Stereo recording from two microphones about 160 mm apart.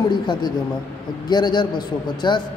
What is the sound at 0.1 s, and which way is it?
A woman's voice, 30° left (ahead or behind).